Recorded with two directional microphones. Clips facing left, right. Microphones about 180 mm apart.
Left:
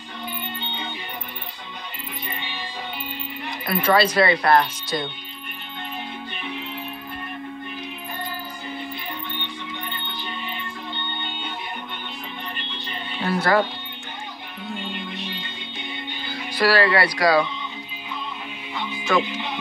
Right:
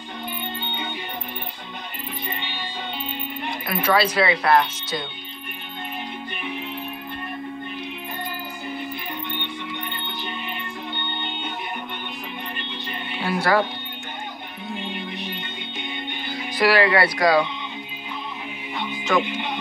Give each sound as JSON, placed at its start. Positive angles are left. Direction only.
{"t": 3.8, "sound": "speech", "side_deg": -5}
{"t": 13.2, "sound": "speech", "side_deg": -10}
{"t": 16.3, "sound": "speech", "side_deg": -20}
{"t": 19.1, "sound": "speech", "side_deg": -15}